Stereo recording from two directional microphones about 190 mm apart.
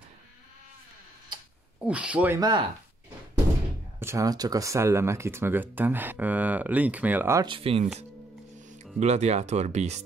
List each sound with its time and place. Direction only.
1.9 s speech: 5° right (ahead or behind)
4.0 s speech: 15° right (ahead or behind)
7.4 s speech: 30° right (ahead or behind)
8.5 s music: 40° right (ahead or behind)
9.0 s speech: 35° right (ahead or behind)